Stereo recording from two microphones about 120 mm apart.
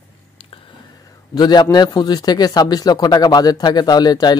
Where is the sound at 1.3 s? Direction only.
35° left (ahead or behind).